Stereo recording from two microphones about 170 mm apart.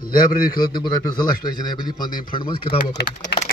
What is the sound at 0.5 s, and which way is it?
Speech, 25° left (ahead or behind).